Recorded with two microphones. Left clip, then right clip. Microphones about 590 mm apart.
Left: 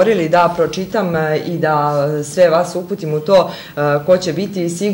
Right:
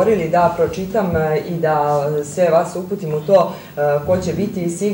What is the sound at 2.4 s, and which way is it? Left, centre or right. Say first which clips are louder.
Speech: left 5 dB; left.